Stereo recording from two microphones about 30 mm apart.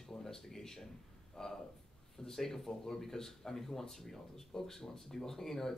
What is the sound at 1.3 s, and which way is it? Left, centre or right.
Speech, centre.